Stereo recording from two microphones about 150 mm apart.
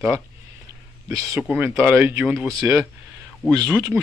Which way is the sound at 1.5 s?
10° right (ahead or behind).